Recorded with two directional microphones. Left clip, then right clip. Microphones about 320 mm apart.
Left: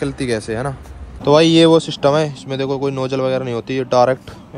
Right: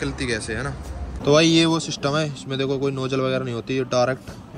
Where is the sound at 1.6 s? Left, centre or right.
Left.